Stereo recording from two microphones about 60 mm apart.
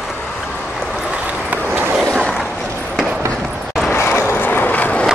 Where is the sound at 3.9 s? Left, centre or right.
Left.